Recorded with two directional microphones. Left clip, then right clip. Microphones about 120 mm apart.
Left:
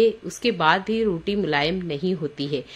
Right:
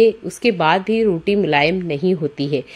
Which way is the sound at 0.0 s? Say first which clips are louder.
Right 6 dB; 45° right (ahead or behind).